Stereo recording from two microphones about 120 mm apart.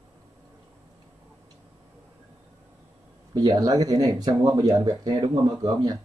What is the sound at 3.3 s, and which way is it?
Speech, 30° right (ahead or behind).